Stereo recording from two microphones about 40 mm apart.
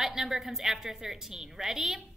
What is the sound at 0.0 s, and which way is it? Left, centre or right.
A woman's voice, centre.